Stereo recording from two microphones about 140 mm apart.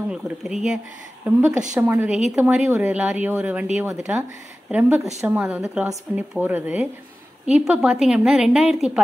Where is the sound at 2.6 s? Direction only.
10° right (ahead or behind).